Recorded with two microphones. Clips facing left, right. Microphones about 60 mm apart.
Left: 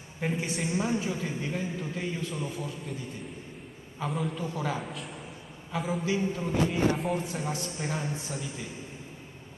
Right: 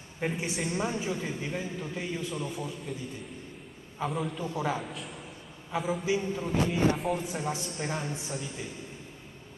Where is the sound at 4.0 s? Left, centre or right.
Centre.